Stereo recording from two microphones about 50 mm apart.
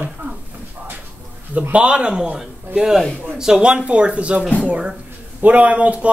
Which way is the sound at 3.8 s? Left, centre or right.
Right.